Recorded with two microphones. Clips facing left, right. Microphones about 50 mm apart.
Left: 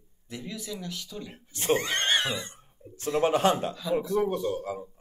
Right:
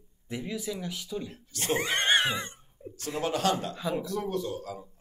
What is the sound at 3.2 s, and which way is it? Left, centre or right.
Speech, left.